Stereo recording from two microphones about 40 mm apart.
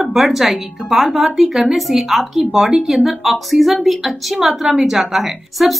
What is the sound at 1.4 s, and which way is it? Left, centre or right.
Speech, centre.